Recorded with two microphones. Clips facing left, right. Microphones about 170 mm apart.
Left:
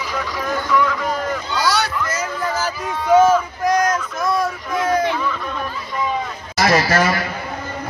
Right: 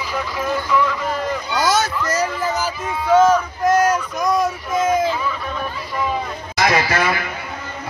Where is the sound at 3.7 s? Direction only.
5° right (ahead or behind).